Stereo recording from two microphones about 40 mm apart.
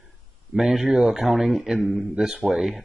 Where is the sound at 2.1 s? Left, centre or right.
Centre.